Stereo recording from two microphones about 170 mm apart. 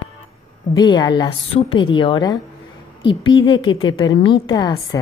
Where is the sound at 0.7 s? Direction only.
25° left (ahead or behind).